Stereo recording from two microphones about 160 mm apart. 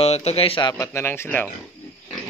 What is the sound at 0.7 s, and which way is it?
Speech, 15° left (ahead or behind).